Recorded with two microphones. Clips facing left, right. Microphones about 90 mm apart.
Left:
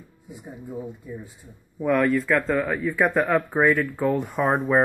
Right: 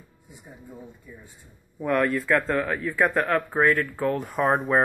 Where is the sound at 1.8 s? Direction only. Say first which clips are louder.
Left 3 dB; centre (ahead or behind).